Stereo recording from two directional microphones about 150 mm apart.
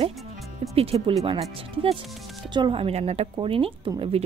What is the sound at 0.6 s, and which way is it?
Speech, 40° right (ahead or behind).